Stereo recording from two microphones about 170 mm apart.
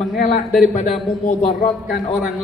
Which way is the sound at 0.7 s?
45° left (ahead or behind).